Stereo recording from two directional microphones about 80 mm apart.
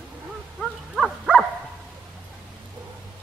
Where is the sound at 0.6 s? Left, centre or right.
Centre.